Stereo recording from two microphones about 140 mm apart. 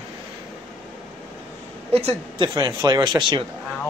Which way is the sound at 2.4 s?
30° right (ahead or behind).